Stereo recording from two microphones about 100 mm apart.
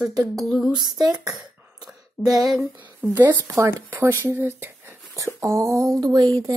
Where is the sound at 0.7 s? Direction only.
40° right (ahead or behind).